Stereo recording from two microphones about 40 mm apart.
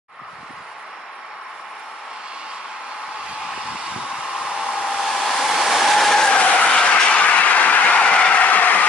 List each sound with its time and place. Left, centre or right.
4.1 s hair dryer: centre
4.7 s hair dryer: centre
6.4 s vehicle: left